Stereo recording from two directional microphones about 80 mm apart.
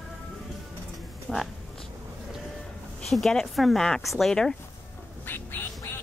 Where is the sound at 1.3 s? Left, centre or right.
Centre.